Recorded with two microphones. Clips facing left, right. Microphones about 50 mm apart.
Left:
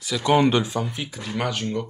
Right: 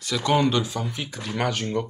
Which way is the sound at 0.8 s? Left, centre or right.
Centre.